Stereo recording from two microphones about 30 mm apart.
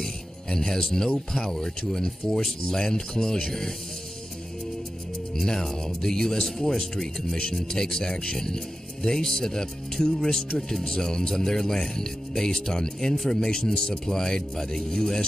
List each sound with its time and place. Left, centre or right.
0.0 s speech: centre
5.3 s speech: centre